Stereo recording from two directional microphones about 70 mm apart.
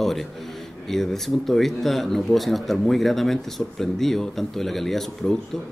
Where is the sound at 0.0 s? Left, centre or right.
Centre.